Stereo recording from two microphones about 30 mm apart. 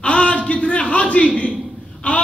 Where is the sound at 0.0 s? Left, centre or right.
Left.